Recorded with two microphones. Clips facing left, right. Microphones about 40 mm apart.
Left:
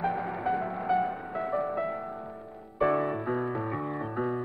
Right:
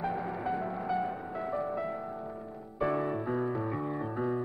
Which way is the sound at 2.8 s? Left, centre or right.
Left.